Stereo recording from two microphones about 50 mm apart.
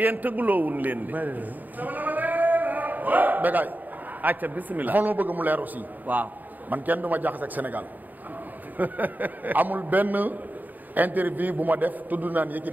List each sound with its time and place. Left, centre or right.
0.0 s a man's voice: right